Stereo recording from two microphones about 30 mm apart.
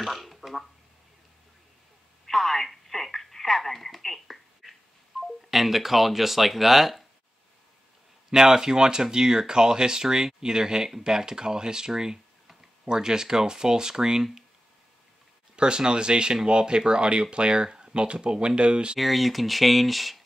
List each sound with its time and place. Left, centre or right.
0.0 s a sound: centre
2.2 s telephone: centre
5.2 s speech: centre
8.3 s speech: centre
15.5 s speech: right
17.6 s a sound: right
18.0 s speech: right
18.9 s speech: centre